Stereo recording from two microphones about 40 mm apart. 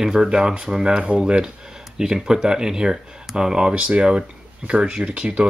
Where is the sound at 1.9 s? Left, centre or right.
Centre.